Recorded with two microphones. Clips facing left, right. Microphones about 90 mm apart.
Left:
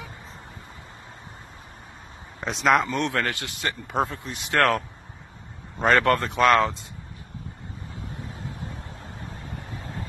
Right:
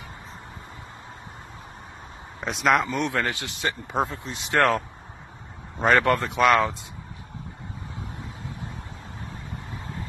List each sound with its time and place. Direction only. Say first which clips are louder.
2.4 s speech: left 1 dB; centre (ahead or behind)
3.0 s speech: even; 15° right (ahead or behind)
5.9 s speech: even; 15° right (ahead or behind)
6.4 s speech: left 1 dB; centre (ahead or behind)